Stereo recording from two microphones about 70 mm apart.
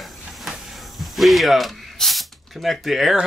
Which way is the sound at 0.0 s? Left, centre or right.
Centre.